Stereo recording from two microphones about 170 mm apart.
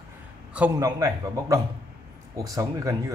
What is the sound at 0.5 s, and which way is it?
Speech, 15° right (ahead or behind).